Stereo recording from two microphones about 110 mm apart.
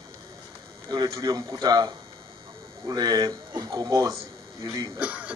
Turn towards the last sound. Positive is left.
turn(degrees=-10)  # may be behind; listen again after turning